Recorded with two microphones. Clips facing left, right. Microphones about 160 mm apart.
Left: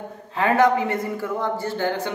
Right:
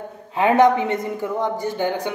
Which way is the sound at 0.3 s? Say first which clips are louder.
Right 3 dB; 20° right (ahead or behind).